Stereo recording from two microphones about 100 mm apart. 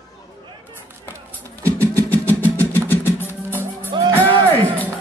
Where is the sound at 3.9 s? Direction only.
50° right (ahead or behind).